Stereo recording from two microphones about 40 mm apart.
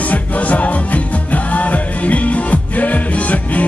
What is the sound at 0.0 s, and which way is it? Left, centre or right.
Music, left.